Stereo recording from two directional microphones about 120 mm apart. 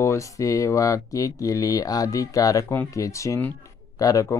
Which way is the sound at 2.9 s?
25° left (ahead or behind).